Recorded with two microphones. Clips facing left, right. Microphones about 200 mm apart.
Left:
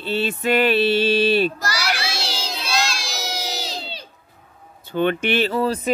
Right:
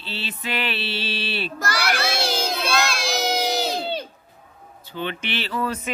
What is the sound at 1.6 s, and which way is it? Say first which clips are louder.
Crowd: right 1 dB; 55° right (ahead or behind).